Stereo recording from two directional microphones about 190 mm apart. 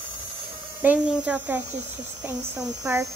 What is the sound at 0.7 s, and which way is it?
Speech, 5° right (ahead or behind).